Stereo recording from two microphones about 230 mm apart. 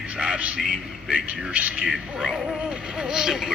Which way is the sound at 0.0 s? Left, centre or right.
Centre.